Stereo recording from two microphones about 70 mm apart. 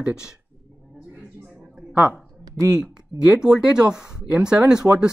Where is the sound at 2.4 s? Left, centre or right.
Right.